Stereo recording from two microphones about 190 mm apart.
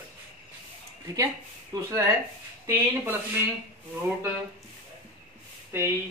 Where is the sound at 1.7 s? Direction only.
20° right (ahead or behind).